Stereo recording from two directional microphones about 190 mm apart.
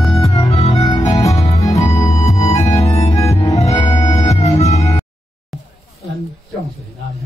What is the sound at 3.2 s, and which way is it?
Music, 15° left (ahead or behind).